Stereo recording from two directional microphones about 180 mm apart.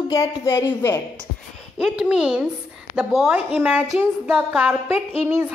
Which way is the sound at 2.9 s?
5° right (ahead or behind).